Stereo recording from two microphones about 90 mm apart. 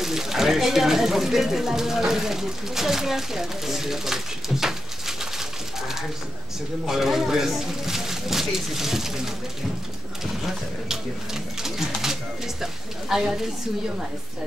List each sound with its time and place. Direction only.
0.0 s speech: 5° right (ahead or behind)
10.9 s speech: 5° right (ahead or behind)